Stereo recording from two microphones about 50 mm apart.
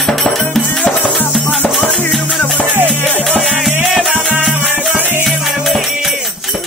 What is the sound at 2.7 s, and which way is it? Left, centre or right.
Music, right.